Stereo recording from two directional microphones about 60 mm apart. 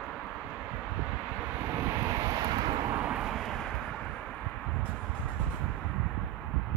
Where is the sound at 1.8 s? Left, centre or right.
Right.